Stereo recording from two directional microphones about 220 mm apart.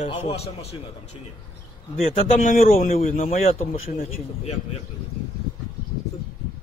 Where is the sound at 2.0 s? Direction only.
40° left (ahead or behind).